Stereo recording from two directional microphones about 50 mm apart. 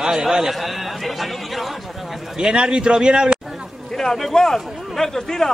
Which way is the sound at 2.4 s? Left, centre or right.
Centre.